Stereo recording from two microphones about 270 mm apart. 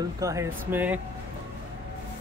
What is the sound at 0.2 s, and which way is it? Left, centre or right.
Speech, centre.